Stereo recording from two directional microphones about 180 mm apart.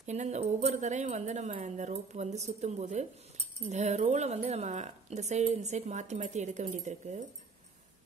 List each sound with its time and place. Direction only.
0.0 s speech: 40° right (ahead or behind)